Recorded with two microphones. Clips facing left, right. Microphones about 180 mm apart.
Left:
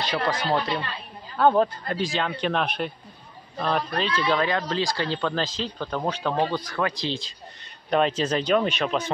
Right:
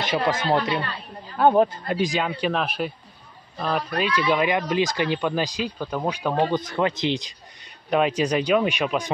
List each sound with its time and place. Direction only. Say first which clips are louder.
0.0 s speech: right 3 dB; 20° right (ahead or behind)
1.4 s speech: right 2 dB; 15° right (ahead or behind)
6.6 s speech: right 4 dB; 20° right (ahead or behind)